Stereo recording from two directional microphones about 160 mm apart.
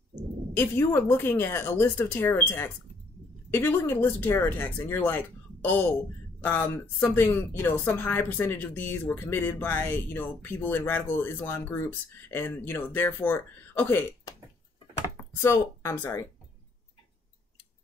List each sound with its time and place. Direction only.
0.6 s speech: 15° left (ahead or behind)
15.1 s speech: 15° left (ahead or behind)